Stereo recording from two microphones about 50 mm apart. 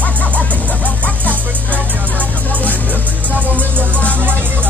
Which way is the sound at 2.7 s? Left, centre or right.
Right.